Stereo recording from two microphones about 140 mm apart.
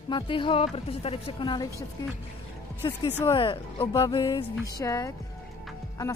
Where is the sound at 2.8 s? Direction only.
35° left (ahead or behind).